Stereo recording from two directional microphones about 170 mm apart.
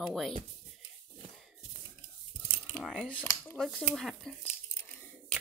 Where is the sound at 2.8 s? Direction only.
Centre (ahead or behind).